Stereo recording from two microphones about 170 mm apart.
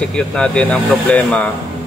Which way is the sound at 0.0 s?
5° left (ahead or behind).